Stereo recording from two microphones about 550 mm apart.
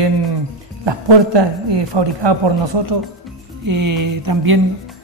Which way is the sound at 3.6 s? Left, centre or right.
Right.